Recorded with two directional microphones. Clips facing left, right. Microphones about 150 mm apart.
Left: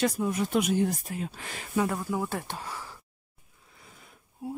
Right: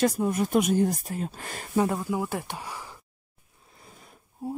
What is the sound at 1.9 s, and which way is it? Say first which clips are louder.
Speech: right 2 dB; 15° right (ahead or behind).